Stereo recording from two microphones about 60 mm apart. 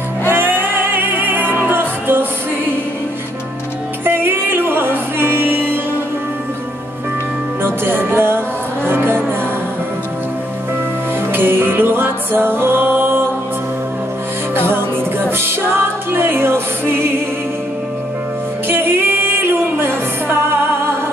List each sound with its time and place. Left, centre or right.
0.3 s music: right
4.0 s music: right
7.6 s music: right
11.1 s music: right
14.5 s music: right
18.7 s music: right